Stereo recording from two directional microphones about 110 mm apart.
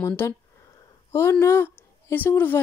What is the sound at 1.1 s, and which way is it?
A woman's voice, 25° left (ahead or behind).